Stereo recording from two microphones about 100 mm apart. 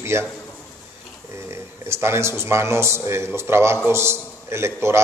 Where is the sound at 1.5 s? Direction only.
25° right (ahead or behind).